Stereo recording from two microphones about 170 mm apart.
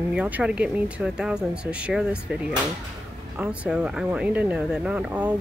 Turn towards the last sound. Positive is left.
turn(degrees=-10)  # may be behind; listen again after turning